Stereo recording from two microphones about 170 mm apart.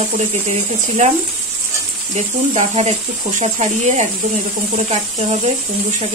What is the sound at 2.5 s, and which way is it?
Speech, 45° right (ahead or behind).